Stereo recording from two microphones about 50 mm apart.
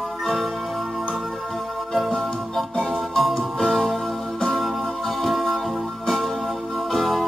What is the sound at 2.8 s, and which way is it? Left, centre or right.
Music, centre.